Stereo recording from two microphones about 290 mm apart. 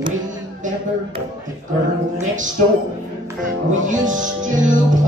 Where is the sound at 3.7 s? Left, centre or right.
Right.